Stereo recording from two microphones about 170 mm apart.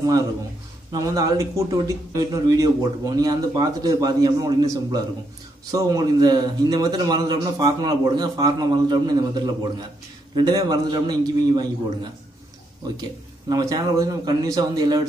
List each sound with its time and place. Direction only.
0.9 s speech: 20° right (ahead or behind)
13.5 s speech: 20° right (ahead or behind)